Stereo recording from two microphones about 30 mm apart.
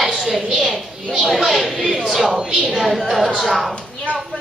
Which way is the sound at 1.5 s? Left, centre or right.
Centre.